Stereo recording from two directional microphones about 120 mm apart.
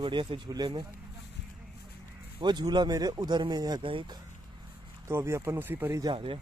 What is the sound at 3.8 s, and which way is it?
Speech, 45° right (ahead or behind).